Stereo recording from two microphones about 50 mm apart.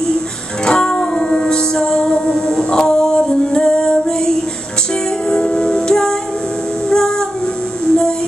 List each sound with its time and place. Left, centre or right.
0.7 s music: centre